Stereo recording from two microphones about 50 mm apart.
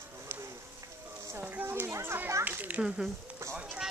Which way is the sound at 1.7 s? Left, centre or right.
Right.